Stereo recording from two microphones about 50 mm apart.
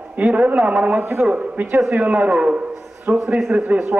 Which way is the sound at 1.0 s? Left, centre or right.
Right.